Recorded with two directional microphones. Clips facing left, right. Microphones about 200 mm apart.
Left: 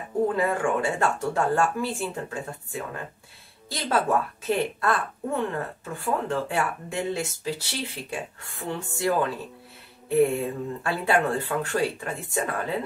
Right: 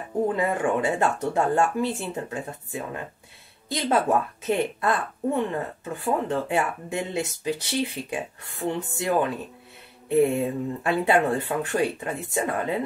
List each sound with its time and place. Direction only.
0.4 s speech: 20° right (ahead or behind)